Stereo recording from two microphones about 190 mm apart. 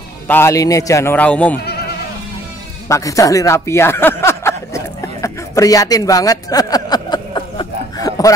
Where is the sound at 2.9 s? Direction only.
15° left (ahead or behind).